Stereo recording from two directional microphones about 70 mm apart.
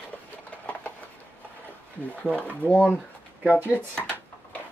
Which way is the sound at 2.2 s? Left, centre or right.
Centre.